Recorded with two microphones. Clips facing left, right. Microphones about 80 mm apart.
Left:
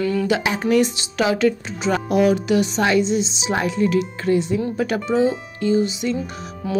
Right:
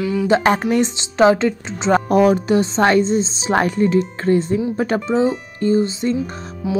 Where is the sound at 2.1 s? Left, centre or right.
Right.